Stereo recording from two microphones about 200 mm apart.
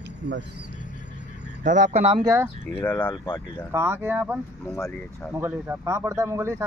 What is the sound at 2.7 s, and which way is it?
Speech, 10° left (ahead or behind).